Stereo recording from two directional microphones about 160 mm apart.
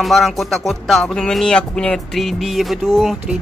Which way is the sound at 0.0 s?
Centre (ahead or behind).